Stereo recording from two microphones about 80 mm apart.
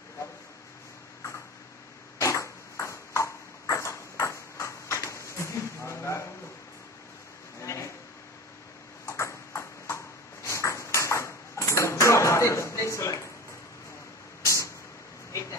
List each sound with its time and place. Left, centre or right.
2.1 s ping: left
7.6 s a sound: left
9.0 s ping: left
14.4 s vehicle: left